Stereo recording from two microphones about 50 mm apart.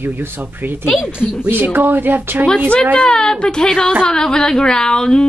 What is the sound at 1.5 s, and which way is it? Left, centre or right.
Speech, right.